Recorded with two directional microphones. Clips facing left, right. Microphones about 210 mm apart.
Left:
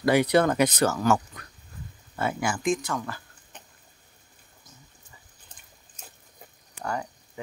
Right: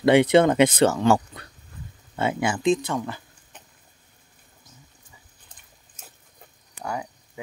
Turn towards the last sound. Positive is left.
turn(degrees=-5)  # may be behind; listen again after turning